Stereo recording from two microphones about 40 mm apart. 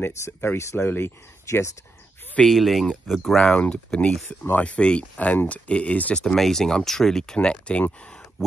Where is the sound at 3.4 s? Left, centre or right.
Left.